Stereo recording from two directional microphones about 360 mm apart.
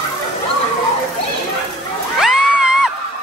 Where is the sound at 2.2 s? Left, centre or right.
Centre.